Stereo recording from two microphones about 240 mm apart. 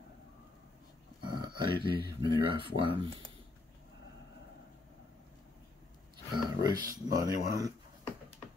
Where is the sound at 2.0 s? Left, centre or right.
Right.